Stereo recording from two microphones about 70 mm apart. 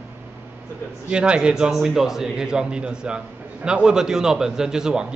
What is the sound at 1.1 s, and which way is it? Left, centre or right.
A man's voice, centre.